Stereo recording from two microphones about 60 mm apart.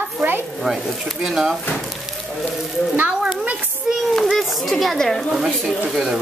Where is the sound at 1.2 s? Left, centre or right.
Centre.